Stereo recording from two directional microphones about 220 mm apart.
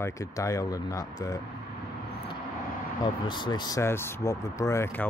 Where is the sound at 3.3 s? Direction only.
20° left (ahead or behind).